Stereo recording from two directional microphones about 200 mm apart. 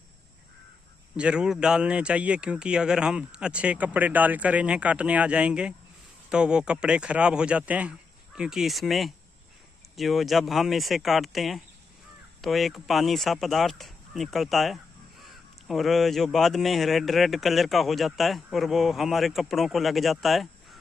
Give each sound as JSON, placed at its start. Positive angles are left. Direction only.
{"t": 1.1, "sound": "speech", "side_deg": -5}